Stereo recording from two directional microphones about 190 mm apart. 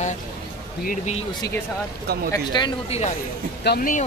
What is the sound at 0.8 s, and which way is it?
Speech, 35° left (ahead or behind).